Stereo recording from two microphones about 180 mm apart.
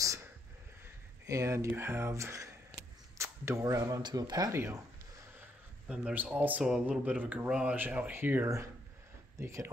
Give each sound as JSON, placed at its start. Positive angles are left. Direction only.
{"t": 1.2, "sound": "speech", "side_deg": -15}
{"t": 5.9, "sound": "speech", "side_deg": -5}